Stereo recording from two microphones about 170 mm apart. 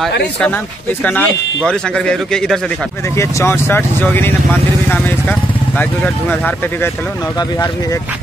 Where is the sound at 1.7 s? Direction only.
5° left (ahead or behind).